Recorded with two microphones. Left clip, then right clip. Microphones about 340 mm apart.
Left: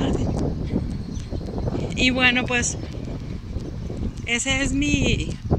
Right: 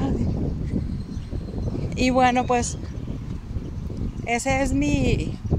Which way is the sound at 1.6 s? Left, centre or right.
Left.